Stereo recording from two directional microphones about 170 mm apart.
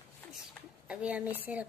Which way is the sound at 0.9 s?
5° right (ahead or behind).